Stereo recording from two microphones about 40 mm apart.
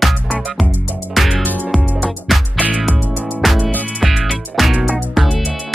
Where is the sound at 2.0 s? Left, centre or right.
Centre.